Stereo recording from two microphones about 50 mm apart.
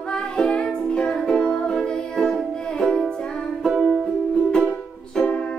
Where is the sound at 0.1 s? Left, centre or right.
Centre.